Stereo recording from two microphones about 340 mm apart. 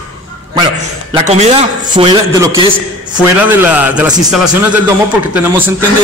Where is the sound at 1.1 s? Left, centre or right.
Centre.